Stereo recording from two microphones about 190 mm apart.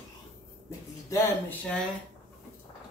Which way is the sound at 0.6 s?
10° left (ahead or behind).